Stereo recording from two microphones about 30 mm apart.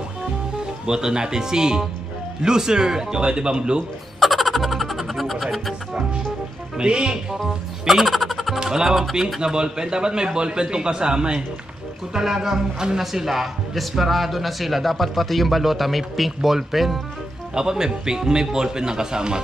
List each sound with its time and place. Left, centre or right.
0.8 s a man's voice: right
4.2 s music: centre
6.8 s speech: right
7.8 s music: centre
8.5 s a man's voice: centre
12.1 s a man's voice: centre
13.0 s speech: centre
17.6 s a man's voice: right